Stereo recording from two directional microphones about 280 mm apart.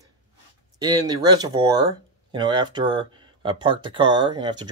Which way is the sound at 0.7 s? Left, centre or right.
Centre.